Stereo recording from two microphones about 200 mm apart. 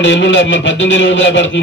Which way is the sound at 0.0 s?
65° left (ahead or behind).